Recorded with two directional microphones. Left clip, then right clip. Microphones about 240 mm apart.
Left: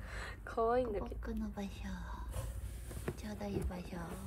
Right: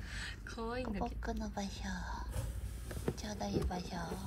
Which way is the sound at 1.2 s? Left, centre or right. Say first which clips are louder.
Right 3 dB; right.